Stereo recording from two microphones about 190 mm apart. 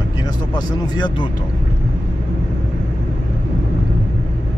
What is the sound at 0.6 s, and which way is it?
Speech, 25° left (ahead or behind).